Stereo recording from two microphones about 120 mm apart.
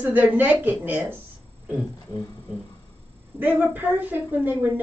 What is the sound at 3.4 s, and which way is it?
Speech, 15° right (ahead or behind).